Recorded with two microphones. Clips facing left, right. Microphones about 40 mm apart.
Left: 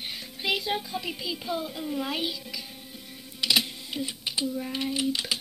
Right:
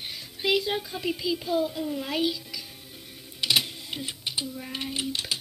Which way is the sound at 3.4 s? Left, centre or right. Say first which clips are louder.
Even; right.